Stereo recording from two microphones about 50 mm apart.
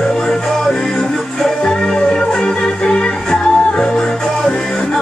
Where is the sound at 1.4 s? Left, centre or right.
Centre.